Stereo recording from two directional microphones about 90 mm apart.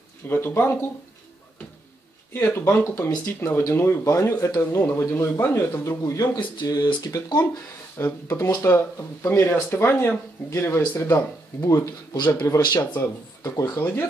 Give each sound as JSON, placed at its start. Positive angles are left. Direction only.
{"t": 0.3, "sound": "speech", "side_deg": 25}
{"t": 2.3, "sound": "speech", "side_deg": 25}
{"t": 4.6, "sound": "speech", "side_deg": 20}
{"t": 4.9, "sound": "speech", "side_deg": 30}
{"t": 8.0, "sound": "speech", "side_deg": 30}
{"t": 11.6, "sound": "speech", "side_deg": 40}
{"t": 12.5, "sound": "speech", "side_deg": 20}
{"t": 13.4, "sound": "speech", "side_deg": 40}